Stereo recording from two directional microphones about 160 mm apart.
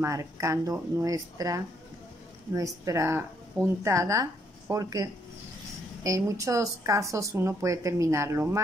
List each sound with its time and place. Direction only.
0.0 s a woman's voice: 20° right (ahead or behind)